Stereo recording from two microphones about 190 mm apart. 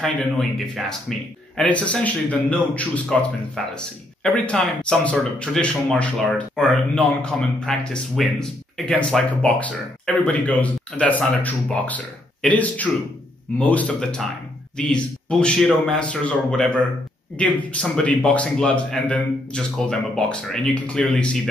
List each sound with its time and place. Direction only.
0.0 s speech: centre (ahead or behind)
17.7 s speech: 5° left (ahead or behind)